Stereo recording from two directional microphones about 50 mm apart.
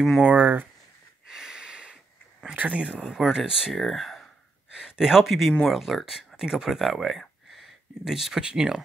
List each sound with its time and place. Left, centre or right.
0.2 s speech: right
1.2 s a sound: centre
2.5 s speech: right; by 3.7 s centre
3.7 s speech: centre
4.7 s speech: centre